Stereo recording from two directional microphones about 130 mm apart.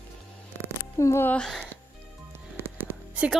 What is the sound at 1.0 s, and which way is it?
Speech, 20° left (ahead or behind).